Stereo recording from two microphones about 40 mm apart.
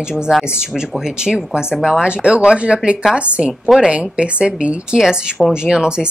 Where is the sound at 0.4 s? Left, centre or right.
Centre.